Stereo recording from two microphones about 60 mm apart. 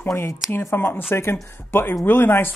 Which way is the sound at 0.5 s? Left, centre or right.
Left.